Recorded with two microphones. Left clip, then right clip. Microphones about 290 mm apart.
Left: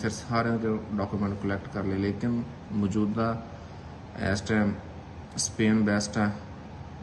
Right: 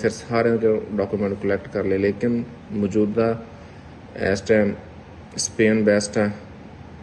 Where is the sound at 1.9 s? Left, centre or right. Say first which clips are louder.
Right 10 dB; right.